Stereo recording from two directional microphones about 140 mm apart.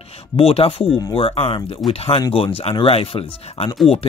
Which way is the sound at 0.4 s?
45° left (ahead or behind).